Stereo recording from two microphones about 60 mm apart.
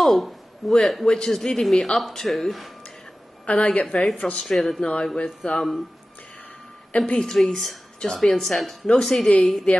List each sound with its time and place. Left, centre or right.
0.0 s speech: centre
3.4 s a woman's voice: left
4.4 s speech: centre
4.8 s a woman's voice: centre
7.0 s a woman's voice: centre
9.7 s a woman's voice: centre